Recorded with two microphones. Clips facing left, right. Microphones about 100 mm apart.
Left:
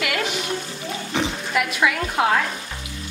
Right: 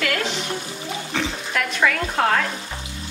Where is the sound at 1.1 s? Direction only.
15° left (ahead or behind).